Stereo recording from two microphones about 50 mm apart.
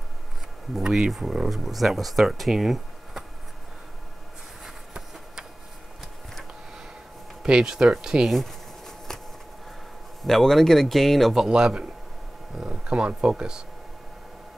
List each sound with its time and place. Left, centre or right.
0.7 s speech: centre
7.4 s speech: centre
8.3 s a sound: centre
10.2 s speech: centre
11.3 s speech: centre